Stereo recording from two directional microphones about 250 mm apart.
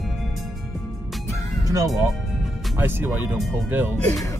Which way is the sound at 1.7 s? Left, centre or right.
Centre.